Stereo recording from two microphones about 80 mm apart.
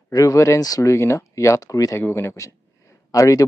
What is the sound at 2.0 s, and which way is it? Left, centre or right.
Speech, left.